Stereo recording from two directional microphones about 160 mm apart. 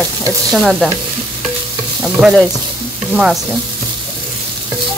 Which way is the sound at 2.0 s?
5° right (ahead or behind).